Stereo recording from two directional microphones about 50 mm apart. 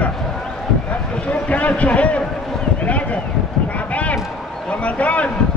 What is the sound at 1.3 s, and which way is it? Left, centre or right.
Speech, left.